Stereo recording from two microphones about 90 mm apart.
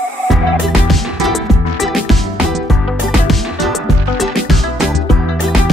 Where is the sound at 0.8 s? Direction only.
Centre (ahead or behind).